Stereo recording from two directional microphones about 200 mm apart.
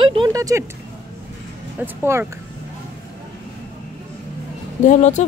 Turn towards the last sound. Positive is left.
turn(degrees=35)  # may be behind; listen again after turning